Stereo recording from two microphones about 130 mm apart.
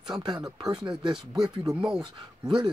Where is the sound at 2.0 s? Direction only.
35° right (ahead or behind).